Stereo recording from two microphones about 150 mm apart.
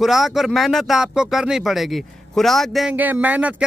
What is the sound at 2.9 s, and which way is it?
Speech, 10° right (ahead or behind).